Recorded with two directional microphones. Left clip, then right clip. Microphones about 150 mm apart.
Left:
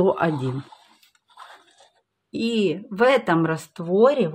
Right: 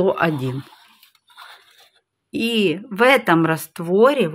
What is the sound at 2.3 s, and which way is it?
Speech, 15° right (ahead or behind).